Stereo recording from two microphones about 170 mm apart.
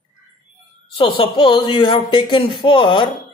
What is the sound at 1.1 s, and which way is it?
Speech, 30° left (ahead or behind).